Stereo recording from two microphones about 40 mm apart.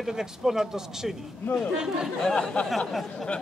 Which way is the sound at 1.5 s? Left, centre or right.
Left.